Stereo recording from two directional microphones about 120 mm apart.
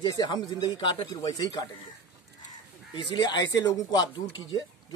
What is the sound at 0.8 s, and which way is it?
Speech, 50° left (ahead or behind).